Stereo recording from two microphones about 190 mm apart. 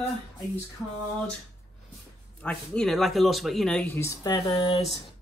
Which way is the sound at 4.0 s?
20° left (ahead or behind).